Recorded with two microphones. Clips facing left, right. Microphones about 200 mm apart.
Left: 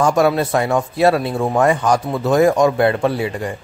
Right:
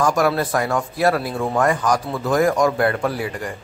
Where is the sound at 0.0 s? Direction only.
25° left (ahead or behind).